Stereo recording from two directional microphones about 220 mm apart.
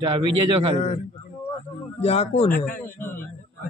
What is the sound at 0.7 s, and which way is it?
Speech, 30° left (ahead or behind).